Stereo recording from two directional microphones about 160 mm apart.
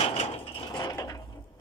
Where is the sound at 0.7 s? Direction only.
25° left (ahead or behind).